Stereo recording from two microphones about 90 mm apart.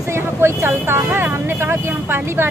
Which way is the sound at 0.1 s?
30° right (ahead or behind).